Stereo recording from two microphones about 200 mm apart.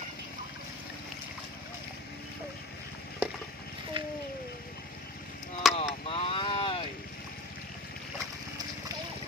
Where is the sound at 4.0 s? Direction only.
25° right (ahead or behind).